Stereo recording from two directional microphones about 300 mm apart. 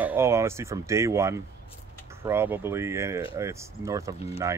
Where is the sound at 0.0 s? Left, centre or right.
Centre.